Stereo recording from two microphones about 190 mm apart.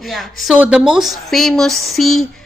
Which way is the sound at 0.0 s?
Centre (ahead or behind).